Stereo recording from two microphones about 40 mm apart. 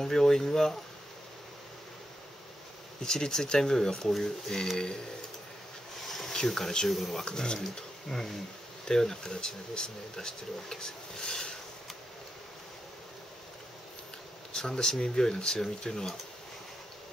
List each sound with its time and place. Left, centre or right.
0.0 s speech: centre
3.0 s speech: centre
6.0 s a sound: centre
6.3 s speech: centre
7.2 s speech: centre
7.6 s speech: centre
14.5 s speech: centre